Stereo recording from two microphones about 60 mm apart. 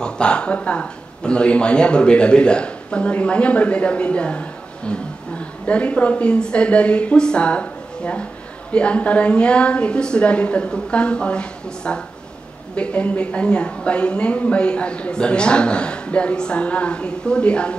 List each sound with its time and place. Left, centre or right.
0.0 s a woman's voice: centre